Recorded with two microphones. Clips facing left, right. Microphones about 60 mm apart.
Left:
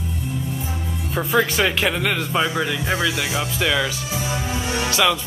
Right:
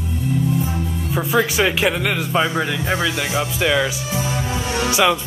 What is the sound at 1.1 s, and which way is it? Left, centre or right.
Speech, centre.